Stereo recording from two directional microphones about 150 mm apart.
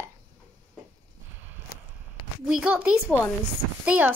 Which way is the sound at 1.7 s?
80° left.